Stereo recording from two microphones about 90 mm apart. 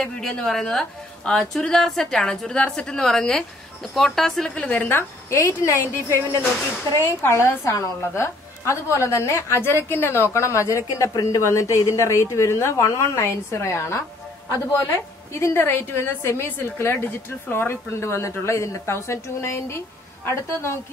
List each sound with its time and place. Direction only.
0.0 s a woman's voice: 5° left (ahead or behind)
5.3 s a woman's voice: 30° left (ahead or behind)